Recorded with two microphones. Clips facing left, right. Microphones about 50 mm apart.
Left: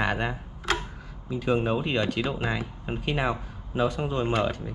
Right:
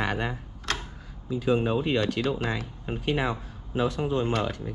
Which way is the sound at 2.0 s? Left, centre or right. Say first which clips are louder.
Right 1 dB; centre.